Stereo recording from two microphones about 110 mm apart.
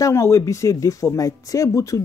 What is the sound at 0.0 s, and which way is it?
Speech, 25° left (ahead or behind).